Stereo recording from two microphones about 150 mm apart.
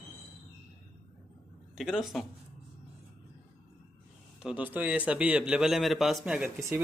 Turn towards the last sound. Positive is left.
turn(degrees=-5)  # may be behind; listen again after turning